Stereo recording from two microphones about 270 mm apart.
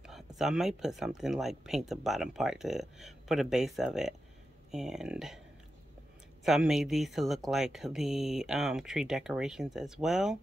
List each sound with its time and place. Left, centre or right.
0.4 s speech: centre
6.4 s speech: centre